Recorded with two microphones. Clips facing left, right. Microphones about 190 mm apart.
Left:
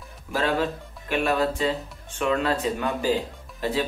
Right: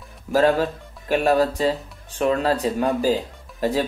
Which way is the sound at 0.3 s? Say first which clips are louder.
Right 6 dB; 40° right (ahead or behind).